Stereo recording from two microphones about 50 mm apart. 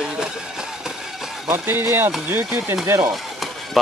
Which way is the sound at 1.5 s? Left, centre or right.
Right.